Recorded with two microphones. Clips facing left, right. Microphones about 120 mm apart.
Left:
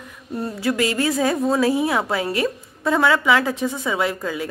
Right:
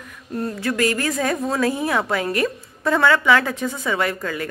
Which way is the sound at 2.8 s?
10° left (ahead or behind).